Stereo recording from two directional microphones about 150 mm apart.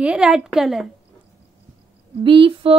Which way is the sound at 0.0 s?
5° right (ahead or behind).